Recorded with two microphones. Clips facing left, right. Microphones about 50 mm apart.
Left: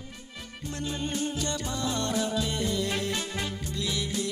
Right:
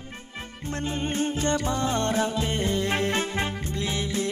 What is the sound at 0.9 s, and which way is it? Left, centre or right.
Music, right.